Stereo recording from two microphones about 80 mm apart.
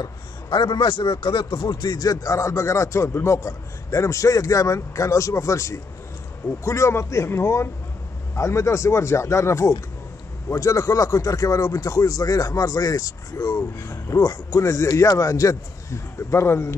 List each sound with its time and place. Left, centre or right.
0.0 s a man's voice: left
1.7 s a man's voice: left
14.2 s speech: left
14.6 s a man's voice: left